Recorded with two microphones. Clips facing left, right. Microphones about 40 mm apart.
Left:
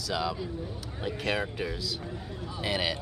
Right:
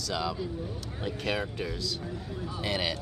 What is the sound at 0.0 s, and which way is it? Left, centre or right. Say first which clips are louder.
Speech: left 1 dB; centre.